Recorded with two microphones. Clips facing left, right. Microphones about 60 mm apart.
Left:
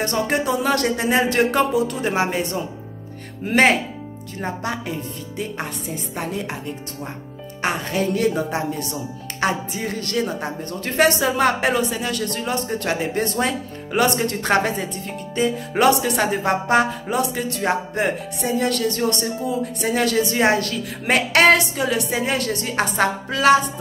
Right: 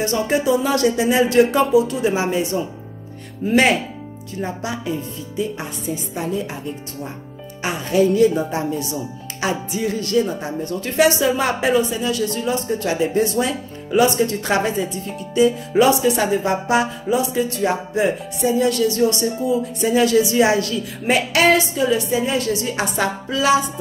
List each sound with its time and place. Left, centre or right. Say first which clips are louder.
0.0 s a woman's voice: right 2 dB; left
7.6 s a woman's voice: right 4 dB; left